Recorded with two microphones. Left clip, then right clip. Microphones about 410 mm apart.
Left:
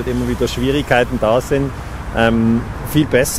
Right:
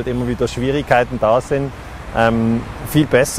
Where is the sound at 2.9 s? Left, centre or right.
Right.